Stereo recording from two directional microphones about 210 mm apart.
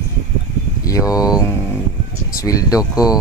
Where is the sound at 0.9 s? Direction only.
15° left (ahead or behind).